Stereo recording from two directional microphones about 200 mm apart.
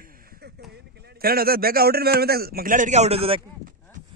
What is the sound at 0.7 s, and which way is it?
A man's voice, 55° right (ahead or behind).